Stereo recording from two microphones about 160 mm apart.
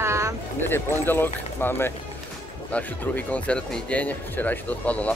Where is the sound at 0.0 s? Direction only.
15° right (ahead or behind).